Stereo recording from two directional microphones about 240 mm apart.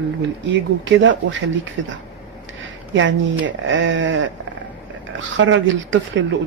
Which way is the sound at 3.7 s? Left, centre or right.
Right.